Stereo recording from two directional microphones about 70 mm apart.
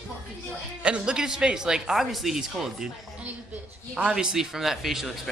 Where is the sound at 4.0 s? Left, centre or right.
Centre.